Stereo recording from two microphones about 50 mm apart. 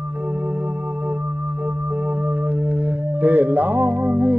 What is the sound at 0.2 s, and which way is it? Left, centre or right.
Music, right.